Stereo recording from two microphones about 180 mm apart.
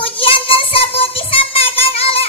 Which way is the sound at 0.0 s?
30° left (ahead or behind).